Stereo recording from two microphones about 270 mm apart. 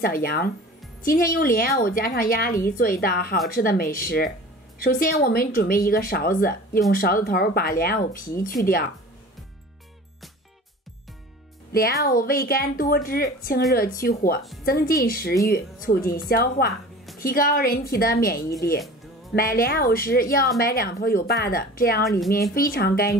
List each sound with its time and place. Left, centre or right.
0.0 s speech: left
11.7 s speech: left